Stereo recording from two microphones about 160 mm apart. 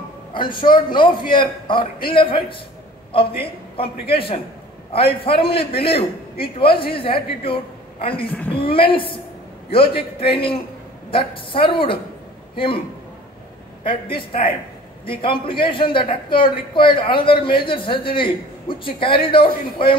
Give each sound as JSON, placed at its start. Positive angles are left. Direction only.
{"t": 0.3, "sound": "a man's voice", "side_deg": 30}
{"t": 13.8, "sound": "a man's voice", "side_deg": 35}